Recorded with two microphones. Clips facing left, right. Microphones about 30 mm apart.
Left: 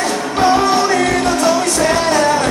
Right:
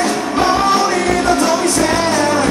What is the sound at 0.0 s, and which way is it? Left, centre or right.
Music, centre.